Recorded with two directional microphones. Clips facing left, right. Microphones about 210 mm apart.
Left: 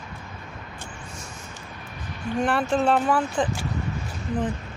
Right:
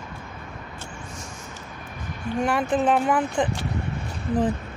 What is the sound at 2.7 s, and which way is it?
Speech, 15° right (ahead or behind).